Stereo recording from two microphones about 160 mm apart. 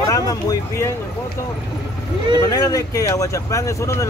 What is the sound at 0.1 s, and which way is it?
Speech, 20° left (ahead or behind).